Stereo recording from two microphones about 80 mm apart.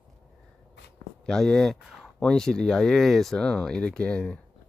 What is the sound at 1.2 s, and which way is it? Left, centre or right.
Speech, centre.